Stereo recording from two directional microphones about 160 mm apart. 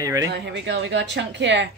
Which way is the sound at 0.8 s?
90° right.